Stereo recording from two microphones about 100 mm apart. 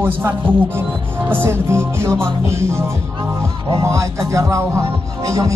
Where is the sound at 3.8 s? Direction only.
30° right (ahead or behind).